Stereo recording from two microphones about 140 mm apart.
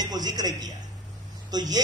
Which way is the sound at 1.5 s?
30° right (ahead or behind).